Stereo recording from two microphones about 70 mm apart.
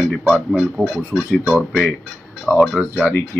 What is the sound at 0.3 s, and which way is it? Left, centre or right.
Speech, centre.